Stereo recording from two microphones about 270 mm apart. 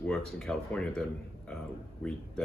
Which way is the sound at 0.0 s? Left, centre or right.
Centre.